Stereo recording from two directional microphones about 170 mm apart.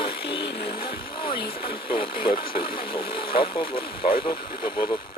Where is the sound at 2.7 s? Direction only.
30° left (ahead or behind).